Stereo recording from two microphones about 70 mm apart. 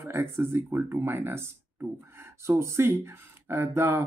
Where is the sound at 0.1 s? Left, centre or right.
Right.